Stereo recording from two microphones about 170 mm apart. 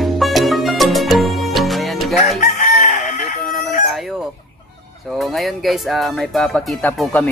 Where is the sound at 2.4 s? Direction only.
50° left (ahead or behind).